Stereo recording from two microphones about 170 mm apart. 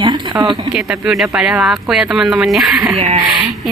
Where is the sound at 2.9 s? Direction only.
35° right (ahead or behind).